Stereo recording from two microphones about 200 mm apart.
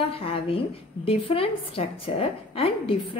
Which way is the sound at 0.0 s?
30° left (ahead or behind).